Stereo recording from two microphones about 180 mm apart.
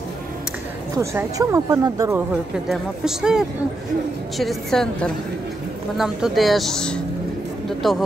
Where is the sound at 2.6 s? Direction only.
5° right (ahead or behind).